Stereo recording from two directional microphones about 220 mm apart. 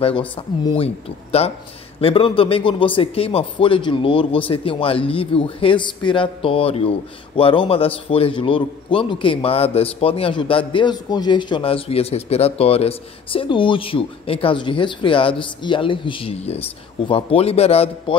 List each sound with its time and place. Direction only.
0.7 s a man's voice: 25° left (ahead or behind)